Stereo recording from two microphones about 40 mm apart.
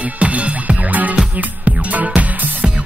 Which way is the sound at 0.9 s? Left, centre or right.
Right.